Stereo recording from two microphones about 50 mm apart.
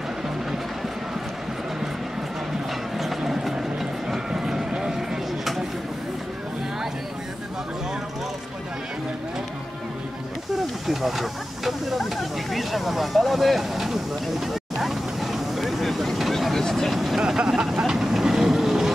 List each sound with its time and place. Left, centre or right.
3.0 s a sound: centre
10.9 s hiss: centre
17.2 s vehicle: centre